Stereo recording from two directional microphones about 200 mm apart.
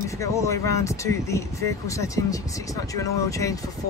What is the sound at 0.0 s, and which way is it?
Speech, 15° left (ahead or behind).